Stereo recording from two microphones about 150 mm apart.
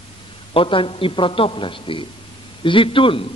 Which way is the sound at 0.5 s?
35° left (ahead or behind).